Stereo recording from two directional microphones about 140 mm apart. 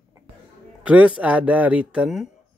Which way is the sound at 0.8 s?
10° right (ahead or behind).